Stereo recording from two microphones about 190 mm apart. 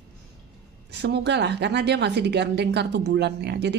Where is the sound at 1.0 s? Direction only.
60° right (ahead or behind).